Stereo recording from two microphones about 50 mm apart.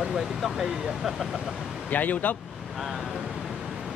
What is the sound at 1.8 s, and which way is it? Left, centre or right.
Speech, left.